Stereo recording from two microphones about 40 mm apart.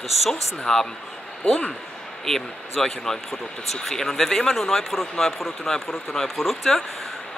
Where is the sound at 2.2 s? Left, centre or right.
Centre.